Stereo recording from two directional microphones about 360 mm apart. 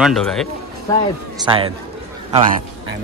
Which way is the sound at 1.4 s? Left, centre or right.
Centre.